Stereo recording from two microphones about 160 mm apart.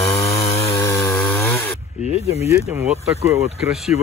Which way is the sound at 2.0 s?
40° left (ahead or behind).